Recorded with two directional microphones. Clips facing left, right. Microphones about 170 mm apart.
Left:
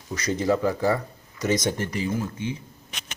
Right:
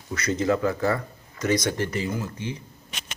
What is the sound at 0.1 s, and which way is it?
Speech, 15° left (ahead or behind).